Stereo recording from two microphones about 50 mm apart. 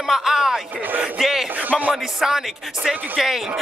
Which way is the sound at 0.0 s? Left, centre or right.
Centre.